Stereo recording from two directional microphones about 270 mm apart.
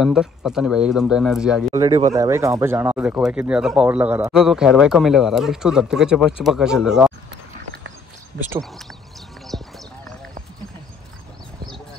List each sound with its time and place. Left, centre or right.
0.0 s speech: centre
1.8 s a man's voice: centre
9.5 s clip-clop: centre